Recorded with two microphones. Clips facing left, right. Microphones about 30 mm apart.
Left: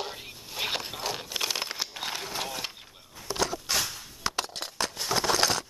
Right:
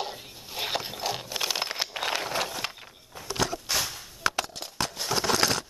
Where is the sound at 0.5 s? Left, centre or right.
Centre.